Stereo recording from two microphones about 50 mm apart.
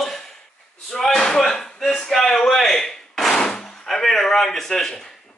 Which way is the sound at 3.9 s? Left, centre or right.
Centre.